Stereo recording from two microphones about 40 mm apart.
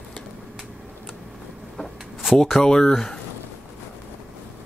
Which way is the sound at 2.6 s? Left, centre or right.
Centre.